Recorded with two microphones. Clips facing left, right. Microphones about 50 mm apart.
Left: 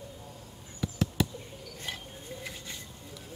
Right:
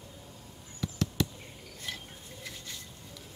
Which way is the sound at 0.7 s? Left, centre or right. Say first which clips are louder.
Left 2 dB; centre.